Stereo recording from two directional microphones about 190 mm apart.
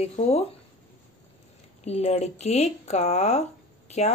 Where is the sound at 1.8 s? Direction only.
35° left (ahead or behind).